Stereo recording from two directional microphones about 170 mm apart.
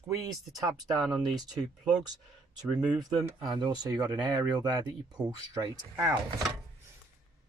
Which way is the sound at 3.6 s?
25° right (ahead or behind).